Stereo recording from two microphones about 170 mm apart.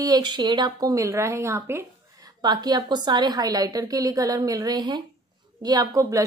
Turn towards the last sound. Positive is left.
turn(degrees=-20)  # may be behind; listen again after turning